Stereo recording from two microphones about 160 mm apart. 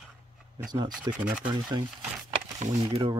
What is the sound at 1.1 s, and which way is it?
Speech, 10° right (ahead or behind).